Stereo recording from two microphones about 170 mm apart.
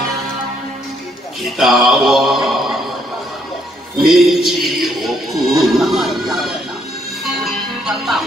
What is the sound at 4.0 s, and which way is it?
Music, centre (ahead or behind).